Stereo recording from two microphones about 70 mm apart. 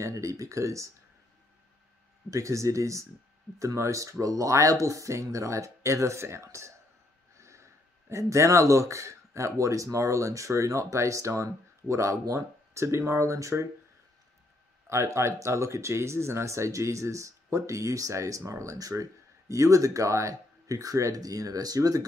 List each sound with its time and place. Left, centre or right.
0.0 s speech: right
2.3 s speech: right
14.9 s speech: right